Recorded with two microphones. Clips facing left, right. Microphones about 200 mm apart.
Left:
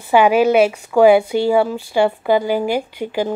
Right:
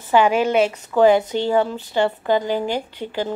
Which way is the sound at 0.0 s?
10° left (ahead or behind).